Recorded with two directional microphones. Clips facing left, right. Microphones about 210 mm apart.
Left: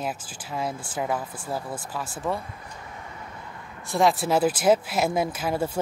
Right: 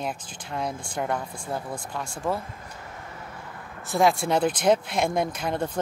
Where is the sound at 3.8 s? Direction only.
Centre (ahead or behind).